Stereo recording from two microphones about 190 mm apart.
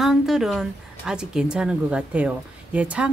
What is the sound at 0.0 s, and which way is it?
Speech, centre (ahead or behind).